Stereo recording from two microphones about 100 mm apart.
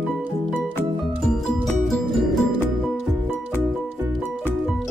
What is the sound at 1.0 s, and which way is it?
Music, centre (ahead or behind).